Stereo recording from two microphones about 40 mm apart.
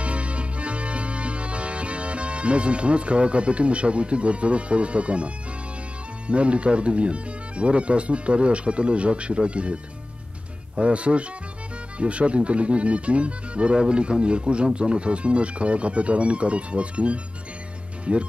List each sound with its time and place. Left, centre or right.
0.0 s music: right
6.2 s speech: right
10.8 s speech: right